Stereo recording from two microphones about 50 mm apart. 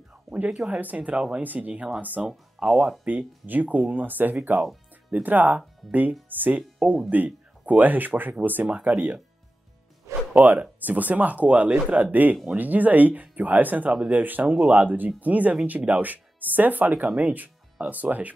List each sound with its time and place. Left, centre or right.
0.1 s a sound: right
0.7 s speech: right
1.1 s speech: centre
1.4 s speech: right
2.2 s speech: centre
3.1 s speech: right
10.3 s speech: right